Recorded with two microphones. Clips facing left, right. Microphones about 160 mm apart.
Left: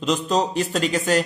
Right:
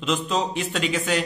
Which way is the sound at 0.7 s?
40° left (ahead or behind).